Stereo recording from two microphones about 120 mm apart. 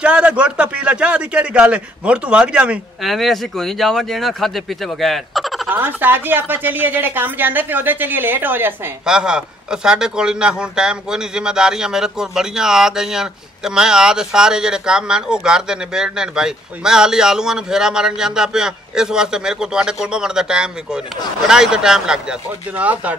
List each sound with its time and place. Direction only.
0.0 s a woman's voice: 10° right (ahead or behind)
3.1 s a man's voice: centre (ahead or behind)
5.7 s a woman's voice: 15° right (ahead or behind)
9.0 s a man's voice: 5° right (ahead or behind)